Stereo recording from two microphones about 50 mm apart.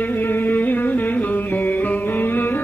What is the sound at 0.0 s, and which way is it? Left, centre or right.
Music, left.